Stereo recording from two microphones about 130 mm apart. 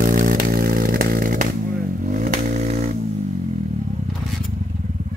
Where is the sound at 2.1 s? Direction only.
90° right; by 2.8 s 65° right (ahead or behind).